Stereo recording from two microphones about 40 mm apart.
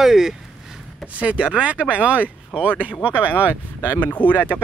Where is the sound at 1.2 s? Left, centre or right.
Right.